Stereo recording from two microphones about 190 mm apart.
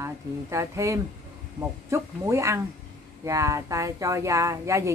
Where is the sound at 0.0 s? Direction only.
15° right (ahead or behind).